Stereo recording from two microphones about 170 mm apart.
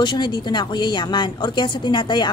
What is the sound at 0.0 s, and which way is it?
A woman's voice, 25° left (ahead or behind).